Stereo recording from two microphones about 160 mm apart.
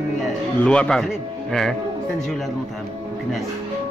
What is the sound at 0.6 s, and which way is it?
Speech, 5° left (ahead or behind).